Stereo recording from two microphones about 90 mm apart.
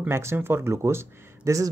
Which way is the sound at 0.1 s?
30° right (ahead or behind).